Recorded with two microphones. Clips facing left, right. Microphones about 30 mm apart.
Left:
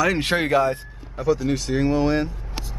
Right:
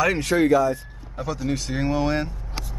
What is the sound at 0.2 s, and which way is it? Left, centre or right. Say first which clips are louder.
Speech: right 1 dB; left.